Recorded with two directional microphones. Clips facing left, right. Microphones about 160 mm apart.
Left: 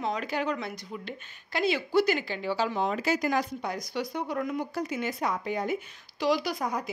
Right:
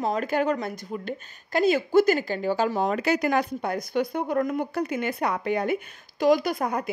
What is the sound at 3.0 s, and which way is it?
Speech, 65° right (ahead or behind).